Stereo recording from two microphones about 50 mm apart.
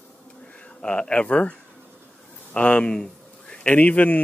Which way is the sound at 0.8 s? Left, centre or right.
Left.